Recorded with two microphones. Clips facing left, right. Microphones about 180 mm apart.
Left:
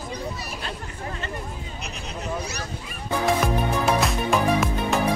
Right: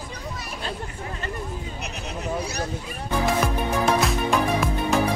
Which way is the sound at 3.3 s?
Centre (ahead or behind).